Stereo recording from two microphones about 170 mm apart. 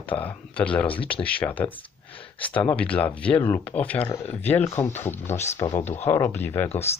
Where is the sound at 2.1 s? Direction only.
30° left (ahead or behind).